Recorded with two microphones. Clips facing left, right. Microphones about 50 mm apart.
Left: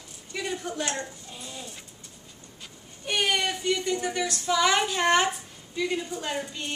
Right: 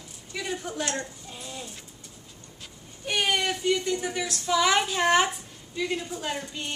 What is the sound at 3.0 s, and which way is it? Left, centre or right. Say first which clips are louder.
A woman's voice: even; centre.